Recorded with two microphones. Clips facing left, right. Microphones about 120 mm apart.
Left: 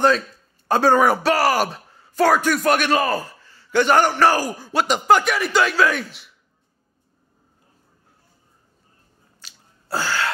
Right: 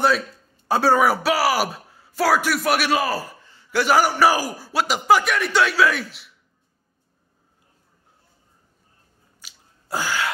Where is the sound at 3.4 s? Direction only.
20° right (ahead or behind).